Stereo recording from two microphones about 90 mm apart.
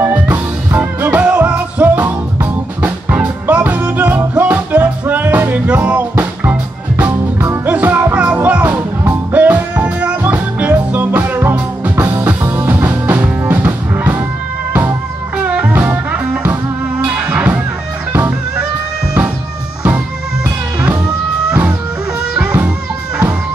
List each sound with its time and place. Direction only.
0.0 s music: 20° right (ahead or behind)
12.0 s music: 25° right (ahead or behind)
20.4 s music: 15° right (ahead or behind)